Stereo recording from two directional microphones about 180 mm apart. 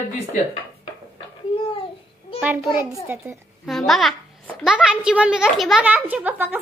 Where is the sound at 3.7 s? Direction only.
Centre (ahead or behind).